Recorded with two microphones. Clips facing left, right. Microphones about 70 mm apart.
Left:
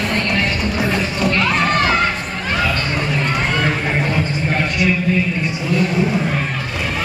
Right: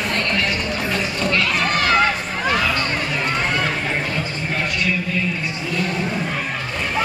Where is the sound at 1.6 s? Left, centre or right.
Left.